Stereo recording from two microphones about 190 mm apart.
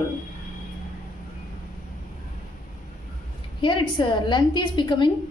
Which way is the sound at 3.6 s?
25° left (ahead or behind).